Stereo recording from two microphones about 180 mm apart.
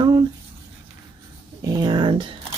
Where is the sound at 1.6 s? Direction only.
20° right (ahead or behind).